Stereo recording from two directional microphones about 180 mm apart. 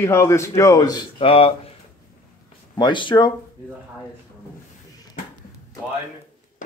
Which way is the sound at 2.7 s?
25° left (ahead or behind).